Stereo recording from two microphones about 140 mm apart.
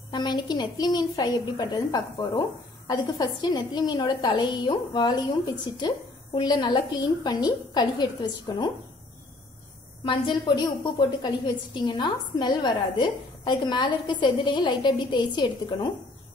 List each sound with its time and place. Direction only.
0.1 s a woman's voice: 30° left (ahead or behind)
10.0 s a woman's voice: 35° left (ahead or behind)